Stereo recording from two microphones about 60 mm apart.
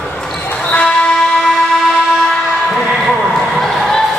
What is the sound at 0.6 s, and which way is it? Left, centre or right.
Vehicle, centre.